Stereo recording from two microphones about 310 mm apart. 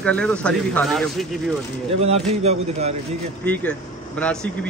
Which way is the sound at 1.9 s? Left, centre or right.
Centre.